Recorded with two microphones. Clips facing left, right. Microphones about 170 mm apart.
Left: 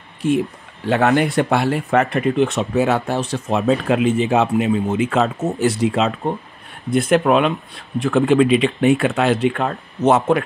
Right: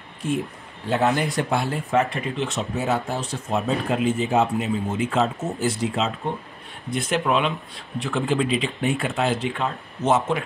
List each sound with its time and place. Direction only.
0.8 s speech: 70° left (ahead or behind)
6.9 s speech: 55° left (ahead or behind)